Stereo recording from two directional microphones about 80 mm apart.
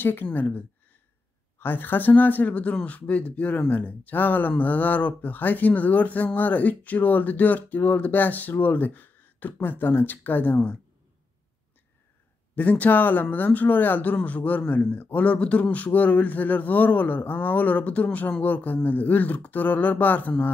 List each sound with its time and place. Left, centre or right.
0.0 s speech: left
12.5 s speech: centre